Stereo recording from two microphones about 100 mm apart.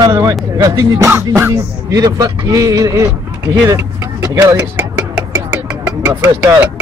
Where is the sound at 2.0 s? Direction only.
35° right (ahead or behind).